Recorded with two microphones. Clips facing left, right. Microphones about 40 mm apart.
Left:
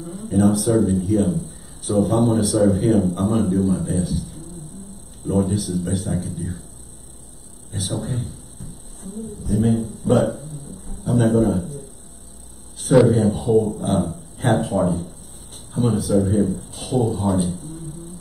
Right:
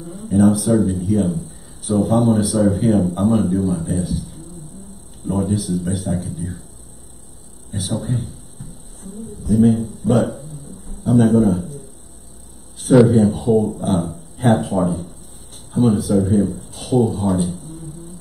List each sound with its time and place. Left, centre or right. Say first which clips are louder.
0.3 s speech: right 3 dB; centre
7.7 s speech: right 3 dB; centre
9.5 s speech: right 5 dB; centre
12.8 s speech: right 3 dB; centre